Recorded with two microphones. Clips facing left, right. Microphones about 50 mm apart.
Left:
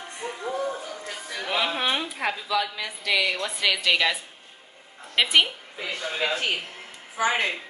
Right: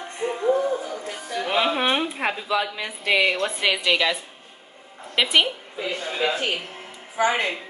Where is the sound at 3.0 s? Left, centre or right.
Right.